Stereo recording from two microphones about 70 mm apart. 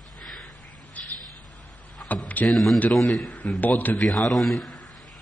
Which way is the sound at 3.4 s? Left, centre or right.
Left.